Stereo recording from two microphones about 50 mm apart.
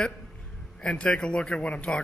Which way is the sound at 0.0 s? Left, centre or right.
Centre.